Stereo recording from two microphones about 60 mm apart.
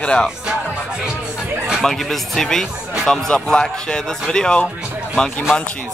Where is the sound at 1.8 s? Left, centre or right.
Centre.